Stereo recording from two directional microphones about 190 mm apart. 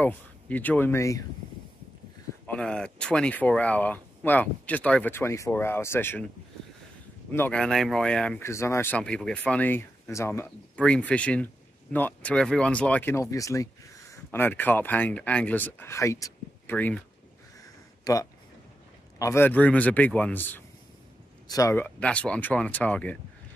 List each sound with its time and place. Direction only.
0.0 s speech: 10° left (ahead or behind)
2.4 s speech: 5° left (ahead or behind)
7.3 s speech: 5° left (ahead or behind)
18.0 s speech: 15° left (ahead or behind)